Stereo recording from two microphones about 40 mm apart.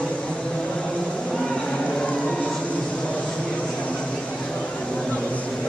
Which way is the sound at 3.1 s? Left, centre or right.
Left.